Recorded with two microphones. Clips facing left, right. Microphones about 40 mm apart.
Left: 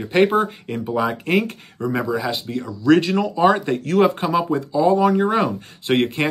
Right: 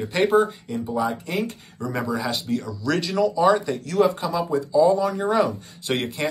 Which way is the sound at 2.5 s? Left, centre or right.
Left.